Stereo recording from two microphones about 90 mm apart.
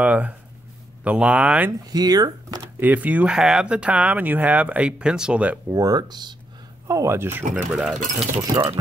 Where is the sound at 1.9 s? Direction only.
45° right (ahead or behind).